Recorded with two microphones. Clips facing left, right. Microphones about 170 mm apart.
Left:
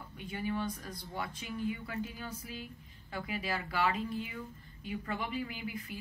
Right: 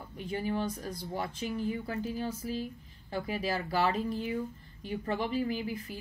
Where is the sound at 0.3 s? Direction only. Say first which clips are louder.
Right 3 dB; 35° right (ahead or behind).